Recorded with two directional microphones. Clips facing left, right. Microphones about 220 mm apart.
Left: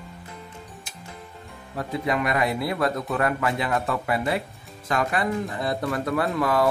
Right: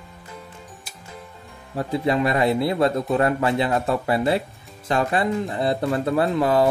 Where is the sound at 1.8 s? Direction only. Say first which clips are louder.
Right 4 dB; 30° right (ahead or behind).